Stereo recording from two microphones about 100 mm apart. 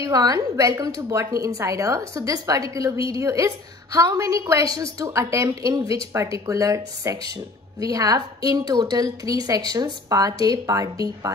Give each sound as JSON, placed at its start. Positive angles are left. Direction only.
{"t": 0.0, "sound": "a woman's voice", "side_deg": -40}